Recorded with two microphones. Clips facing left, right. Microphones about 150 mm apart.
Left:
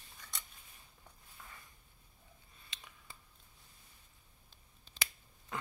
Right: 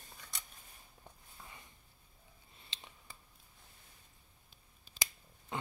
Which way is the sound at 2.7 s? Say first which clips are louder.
Right 1 dB; 30° right (ahead or behind).